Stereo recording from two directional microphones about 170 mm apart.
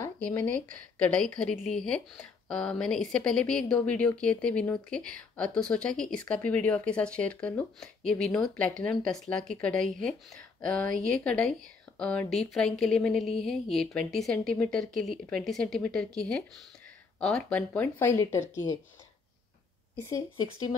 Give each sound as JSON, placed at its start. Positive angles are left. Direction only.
{"t": 0.0, "sound": "a sound", "side_deg": 15}
{"t": 0.9, "sound": "speech", "side_deg": 5}
{"t": 20.0, "sound": "speech", "side_deg": 20}
{"t": 20.3, "sound": "speech", "side_deg": 30}